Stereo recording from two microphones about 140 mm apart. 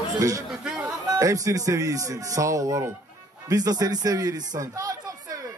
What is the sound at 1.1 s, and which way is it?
A man's voice, 25° right (ahead or behind).